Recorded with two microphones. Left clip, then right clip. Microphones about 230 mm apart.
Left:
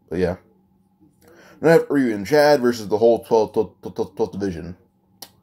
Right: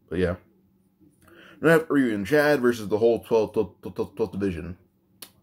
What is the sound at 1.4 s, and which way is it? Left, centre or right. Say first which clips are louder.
Speech: left 5 dB; centre.